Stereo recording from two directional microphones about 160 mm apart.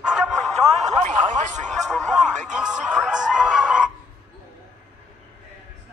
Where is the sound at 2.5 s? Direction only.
5° right (ahead or behind).